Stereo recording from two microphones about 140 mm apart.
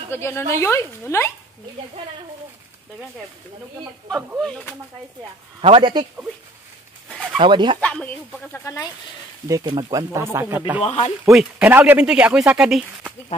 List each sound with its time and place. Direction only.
0.1 s speech: 20° left (ahead or behind)
4.4 s speech: 5° left (ahead or behind)
5.6 s speech: 40° right (ahead or behind)
7.1 s bird: centre (ahead or behind)
7.3 s speech: 35° right (ahead or behind)
7.8 s speech: 10° left (ahead or behind)
8.7 s speech: 25° left (ahead or behind)
9.5 s speech: 25° right (ahead or behind)
10.8 s speech: 45° left (ahead or behind)
11.3 s speech: 10° right (ahead or behind)